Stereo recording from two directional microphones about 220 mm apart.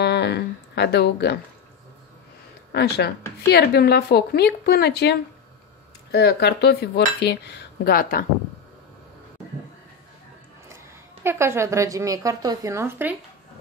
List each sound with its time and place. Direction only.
0.0 s speech: 50° left (ahead or behind)
2.7 s cutlery: 50° left (ahead or behind)
11.2 s a woman's voice: 10° right (ahead or behind)